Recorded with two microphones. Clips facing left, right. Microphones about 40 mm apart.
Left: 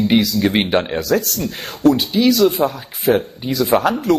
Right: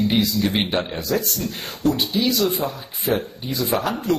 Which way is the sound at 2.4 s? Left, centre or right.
Left.